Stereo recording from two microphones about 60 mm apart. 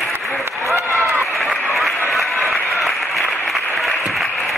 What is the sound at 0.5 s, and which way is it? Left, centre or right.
Applause, right.